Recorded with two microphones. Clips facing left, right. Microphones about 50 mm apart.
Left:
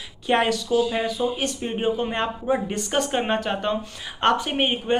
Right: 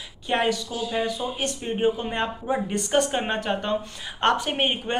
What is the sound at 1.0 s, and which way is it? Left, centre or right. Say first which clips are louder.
Speech: left 3 dB; right.